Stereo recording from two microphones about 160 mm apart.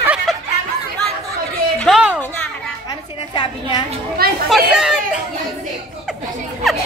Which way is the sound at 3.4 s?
25° left (ahead or behind).